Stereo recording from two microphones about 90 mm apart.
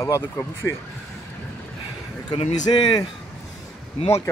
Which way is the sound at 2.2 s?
50° left (ahead or behind).